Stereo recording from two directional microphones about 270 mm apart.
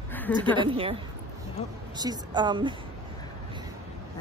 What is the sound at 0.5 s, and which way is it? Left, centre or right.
A woman's voice, centre.